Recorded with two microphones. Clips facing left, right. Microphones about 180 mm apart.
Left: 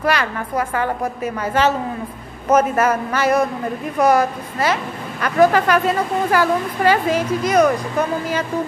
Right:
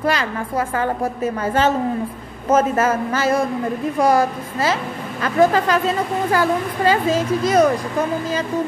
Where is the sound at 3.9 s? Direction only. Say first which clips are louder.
Left 2 dB; 25° right (ahead or behind).